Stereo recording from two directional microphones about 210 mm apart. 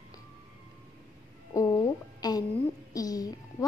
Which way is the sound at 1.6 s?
15° left (ahead or behind).